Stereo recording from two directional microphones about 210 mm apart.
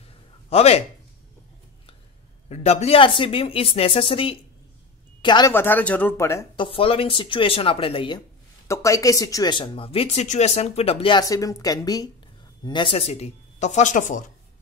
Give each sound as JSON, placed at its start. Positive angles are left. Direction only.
{"t": 0.5, "sound": "speech", "side_deg": 30}
{"t": 2.5, "sound": "speech", "side_deg": 30}
{"t": 5.5, "sound": "speech", "side_deg": 10}
{"t": 8.6, "sound": "speech", "side_deg": 15}